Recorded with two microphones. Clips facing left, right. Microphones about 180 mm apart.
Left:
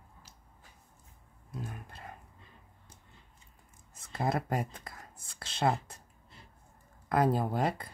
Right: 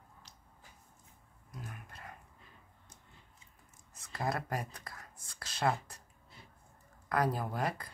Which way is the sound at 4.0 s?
25° left (ahead or behind).